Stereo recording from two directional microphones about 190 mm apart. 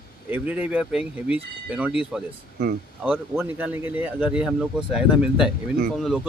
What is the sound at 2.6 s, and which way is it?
Speech, 55° right (ahead or behind).